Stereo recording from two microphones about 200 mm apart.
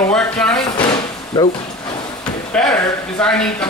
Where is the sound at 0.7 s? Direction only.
20° left (ahead or behind).